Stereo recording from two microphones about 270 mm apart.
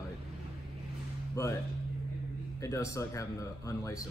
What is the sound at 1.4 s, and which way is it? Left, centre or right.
Speech, centre.